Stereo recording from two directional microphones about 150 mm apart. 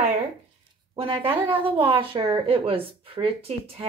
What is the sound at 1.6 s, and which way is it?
Speech, 35° right (ahead or behind).